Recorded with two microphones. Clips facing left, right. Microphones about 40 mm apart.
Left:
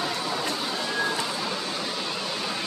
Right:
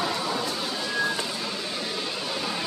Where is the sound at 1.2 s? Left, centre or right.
Centre.